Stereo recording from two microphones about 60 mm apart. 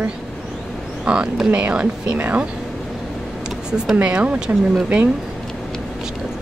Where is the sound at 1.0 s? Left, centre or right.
Centre.